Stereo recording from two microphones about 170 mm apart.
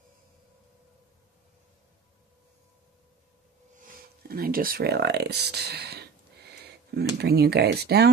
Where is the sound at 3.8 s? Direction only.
60° right (ahead or behind).